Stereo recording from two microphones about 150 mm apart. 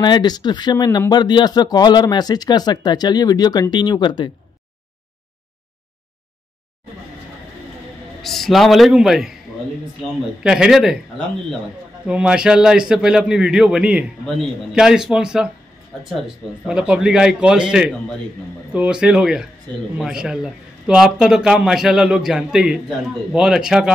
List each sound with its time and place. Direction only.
0.0 s speech: 30° left (ahead or behind)
8.2 s a man's voice: centre (ahead or behind)
10.4 s a man's voice: 5° right (ahead or behind)
16.6 s a man's voice: 5° right (ahead or behind)
19.7 s speech: 10° left (ahead or behind)
20.0 s a man's voice: 5° right (ahead or behind)